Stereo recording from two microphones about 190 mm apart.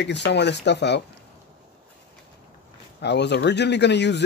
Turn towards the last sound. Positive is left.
turn(degrees=65)  # may be behind; listen again after turning